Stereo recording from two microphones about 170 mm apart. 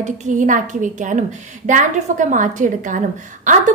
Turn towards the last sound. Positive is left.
turn(degrees=-50)  # may be behind; listen again after turning